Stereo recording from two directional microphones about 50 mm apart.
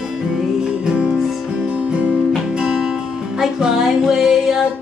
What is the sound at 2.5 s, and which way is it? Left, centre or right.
Music, centre.